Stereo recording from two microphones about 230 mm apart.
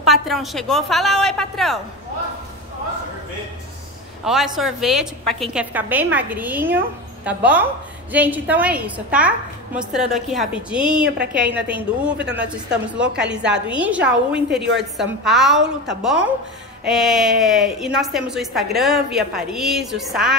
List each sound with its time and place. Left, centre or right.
0.0 s a woman's voice: centre
4.2 s a man's voice: centre
12.2 s a woman's voice: right
12.4 s a woman's voice: centre
14.6 s a woman's voice: right
15.0 s a woman's voice: centre